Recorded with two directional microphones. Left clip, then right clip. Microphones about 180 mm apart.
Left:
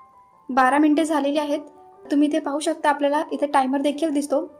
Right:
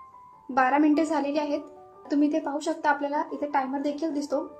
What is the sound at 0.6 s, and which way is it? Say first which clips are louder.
A woman's voice: left 4 dB; 30° left (ahead or behind).